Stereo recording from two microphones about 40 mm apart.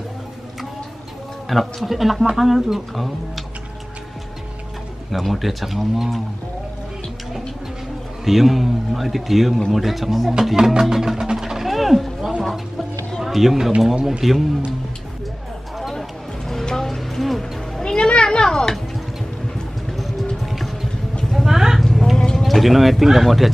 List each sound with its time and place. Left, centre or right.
1.5 s a man's voice: centre
5.1 s a man's voice: centre
8.3 s a man's voice: centre
10.5 s speech: centre
11.3 s a sound: centre
13.2 s speech: centre
15.9 s music: centre
16.8 s a sound: centre
17.4 s music: centre
19.9 s music: centre
21.2 s music: centre
21.5 s a sound: centre
21.8 s a sound: centre
22.3 s speech: centre